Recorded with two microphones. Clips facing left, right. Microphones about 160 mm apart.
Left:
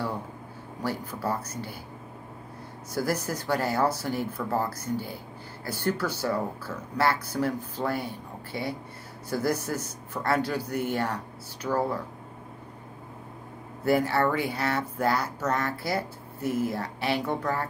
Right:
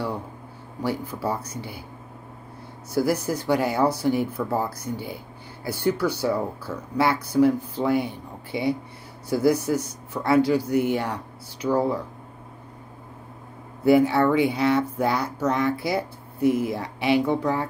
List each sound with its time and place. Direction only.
0.8 s speech: 10° right (ahead or behind)
2.9 s speech: 10° right (ahead or behind)
13.8 s speech: 15° right (ahead or behind)